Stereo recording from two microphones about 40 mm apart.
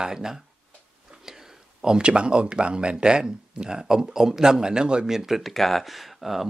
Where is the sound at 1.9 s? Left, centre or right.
Right.